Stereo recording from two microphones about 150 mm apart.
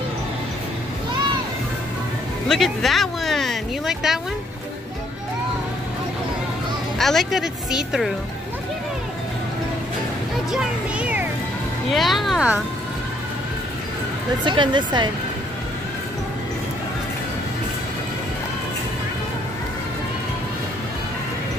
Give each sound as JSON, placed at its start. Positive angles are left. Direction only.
{"t": 2.4, "sound": "speech", "side_deg": 0}
{"t": 7.0, "sound": "speech", "side_deg": 0}
{"t": 10.5, "sound": "speech", "side_deg": -5}
{"t": 14.4, "sound": "speech", "side_deg": -30}